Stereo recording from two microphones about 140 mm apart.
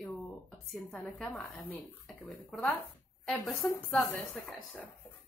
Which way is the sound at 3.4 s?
25° left (ahead or behind).